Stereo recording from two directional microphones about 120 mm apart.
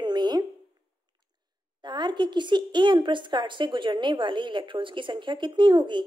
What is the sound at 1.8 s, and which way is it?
Speech, 40° right (ahead or behind).